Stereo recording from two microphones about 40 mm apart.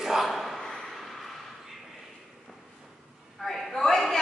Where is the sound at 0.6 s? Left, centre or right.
Centre.